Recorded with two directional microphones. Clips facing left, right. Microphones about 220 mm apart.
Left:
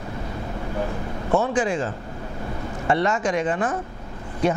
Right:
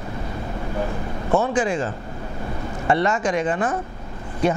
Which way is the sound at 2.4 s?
25° right (ahead or behind).